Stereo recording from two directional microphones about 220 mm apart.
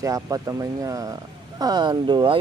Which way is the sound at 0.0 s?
15° right (ahead or behind).